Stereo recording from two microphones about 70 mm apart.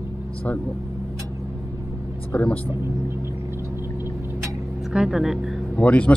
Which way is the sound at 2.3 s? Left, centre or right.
Left.